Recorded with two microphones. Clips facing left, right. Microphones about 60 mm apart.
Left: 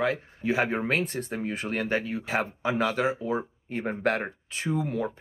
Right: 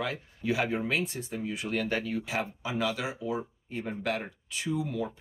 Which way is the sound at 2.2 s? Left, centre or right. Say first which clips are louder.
Left 5 dB; left.